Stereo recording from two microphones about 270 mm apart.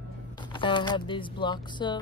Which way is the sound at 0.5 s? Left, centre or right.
Centre.